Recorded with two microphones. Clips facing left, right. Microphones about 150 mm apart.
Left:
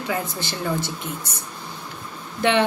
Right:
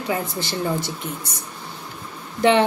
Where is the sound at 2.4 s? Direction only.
35° right (ahead or behind).